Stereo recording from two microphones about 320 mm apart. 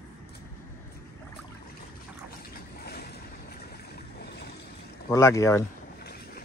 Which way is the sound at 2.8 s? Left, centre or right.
Left.